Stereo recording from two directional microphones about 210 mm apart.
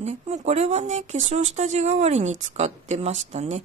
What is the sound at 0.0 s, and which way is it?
Speech, 30° right (ahead or behind).